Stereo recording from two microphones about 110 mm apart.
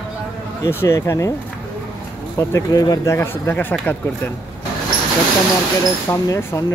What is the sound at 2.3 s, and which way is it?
Speech, 30° left (ahead or behind).